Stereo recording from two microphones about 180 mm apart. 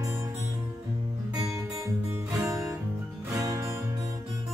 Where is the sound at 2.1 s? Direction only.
15° right (ahead or behind).